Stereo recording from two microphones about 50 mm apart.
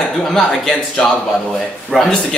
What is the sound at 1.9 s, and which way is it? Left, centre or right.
Speech, centre.